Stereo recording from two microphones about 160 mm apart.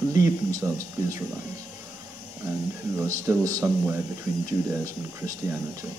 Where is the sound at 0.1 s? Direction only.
20° right (ahead or behind).